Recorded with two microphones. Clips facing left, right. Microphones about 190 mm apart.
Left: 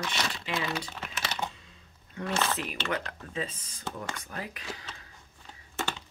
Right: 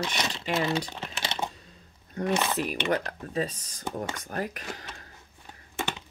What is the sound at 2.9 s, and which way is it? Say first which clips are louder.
Speech: right 5 dB; 40° right (ahead or behind).